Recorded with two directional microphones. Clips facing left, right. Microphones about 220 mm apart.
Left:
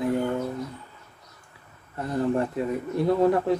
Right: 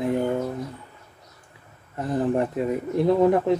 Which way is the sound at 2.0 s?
20° right (ahead or behind).